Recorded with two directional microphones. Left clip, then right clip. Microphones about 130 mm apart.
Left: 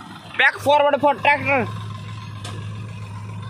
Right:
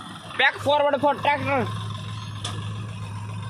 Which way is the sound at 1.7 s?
5° left (ahead or behind).